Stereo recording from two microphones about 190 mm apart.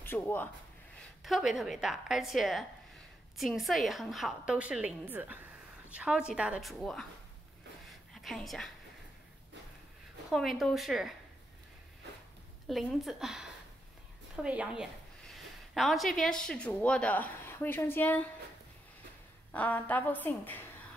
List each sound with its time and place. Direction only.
0.0 s speech: 10° left (ahead or behind)
0.9 s a woman's voice: centre (ahead or behind)
8.1 s a woman's voice: centre (ahead or behind)
10.3 s a woman's voice: centre (ahead or behind)
12.6 s a woman's voice: centre (ahead or behind)
19.5 s a woman's voice: 10° left (ahead or behind)